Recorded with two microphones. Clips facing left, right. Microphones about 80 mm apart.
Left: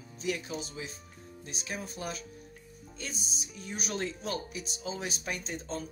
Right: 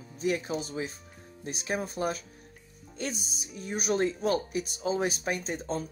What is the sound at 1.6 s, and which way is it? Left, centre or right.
Speech, right.